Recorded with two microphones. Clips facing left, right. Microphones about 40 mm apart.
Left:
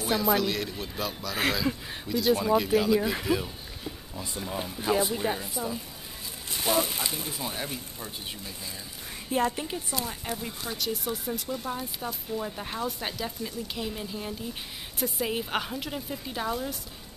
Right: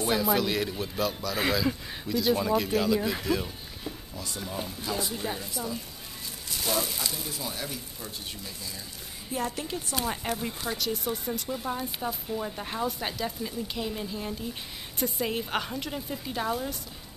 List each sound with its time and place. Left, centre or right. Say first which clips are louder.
0.0 s speech: even; centre
4.8 s speech: left 7 dB; left
9.6 s speech: even; left
10.4 s speech: right 2 dB; centre